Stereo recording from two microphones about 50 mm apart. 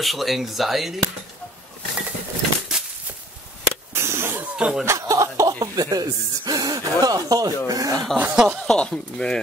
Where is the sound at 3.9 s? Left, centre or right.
Right.